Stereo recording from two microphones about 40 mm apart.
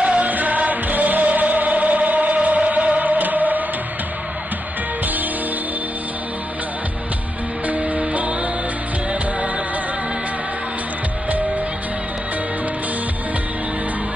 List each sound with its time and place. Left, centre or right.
0.0 s music: right
7.6 s music: right